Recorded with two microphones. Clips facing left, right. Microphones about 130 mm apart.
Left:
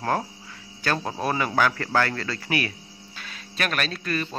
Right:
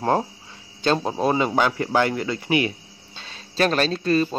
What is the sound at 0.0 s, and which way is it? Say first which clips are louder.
A man's voice: right 4 dB; 25° right (ahead or behind).